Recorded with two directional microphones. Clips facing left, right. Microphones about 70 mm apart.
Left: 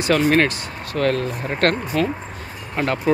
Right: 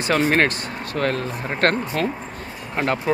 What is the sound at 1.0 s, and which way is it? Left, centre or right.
Speech, right.